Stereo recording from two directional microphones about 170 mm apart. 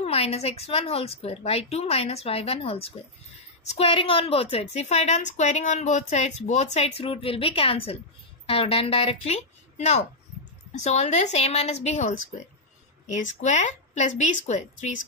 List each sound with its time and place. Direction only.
0.0 s a woman's voice: 35° left (ahead or behind)